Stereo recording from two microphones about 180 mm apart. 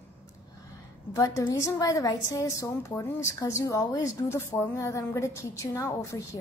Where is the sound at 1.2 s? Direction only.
20° left (ahead or behind).